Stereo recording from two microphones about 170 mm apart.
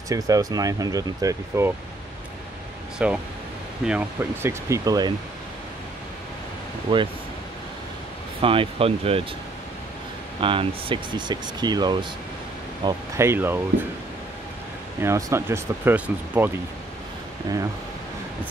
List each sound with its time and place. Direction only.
0.1 s speech: 20° right (ahead or behind)
3.0 s speech: 5° right (ahead or behind); by 5.1 s 20° right (ahead or behind)
6.9 s speech: 30° right (ahead or behind)
8.4 s speech: 30° right (ahead or behind)
10.4 s speech: 30° right (ahead or behind); by 13.6 s 15° right (ahead or behind)
15.0 s speech: 15° right (ahead or behind)